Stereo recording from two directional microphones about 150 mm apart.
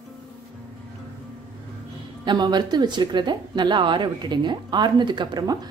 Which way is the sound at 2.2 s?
30° right (ahead or behind).